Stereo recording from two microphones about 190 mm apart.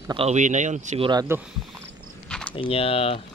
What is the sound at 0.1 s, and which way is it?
Speech, 35° right (ahead or behind).